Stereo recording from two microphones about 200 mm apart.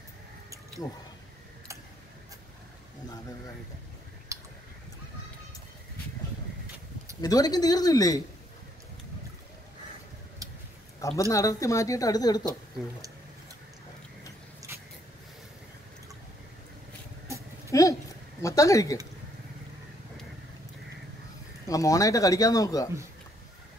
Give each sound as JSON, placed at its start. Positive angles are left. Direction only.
{"t": 4.3, "sound": "a sound", "side_deg": -15}
{"t": 7.2, "sound": "speech", "side_deg": 20}
{"t": 11.1, "sound": "speech", "side_deg": 15}
{"t": 17.6, "sound": "a sound", "side_deg": 15}
{"t": 18.4, "sound": "speech", "side_deg": 15}
{"t": 21.6, "sound": "speech", "side_deg": 15}